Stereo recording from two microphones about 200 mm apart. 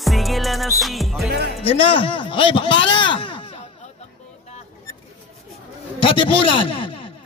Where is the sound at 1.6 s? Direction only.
25° left (ahead or behind).